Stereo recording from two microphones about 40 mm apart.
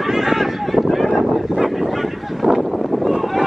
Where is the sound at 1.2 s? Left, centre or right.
Centre.